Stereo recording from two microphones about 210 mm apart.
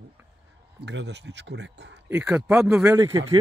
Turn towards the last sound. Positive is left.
turn(degrees=-15)  # may be behind; listen again after turning